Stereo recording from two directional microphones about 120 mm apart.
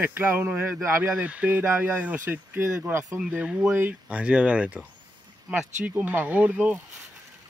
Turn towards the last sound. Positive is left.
turn(degrees=-10)  # may be behind; listen again after turning